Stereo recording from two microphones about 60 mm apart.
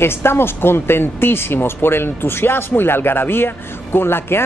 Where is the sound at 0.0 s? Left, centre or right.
Left.